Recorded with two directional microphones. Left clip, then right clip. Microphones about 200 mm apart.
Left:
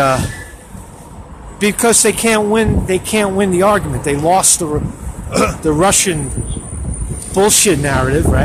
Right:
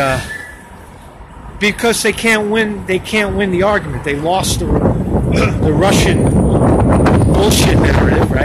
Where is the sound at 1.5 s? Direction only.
20° left (ahead or behind).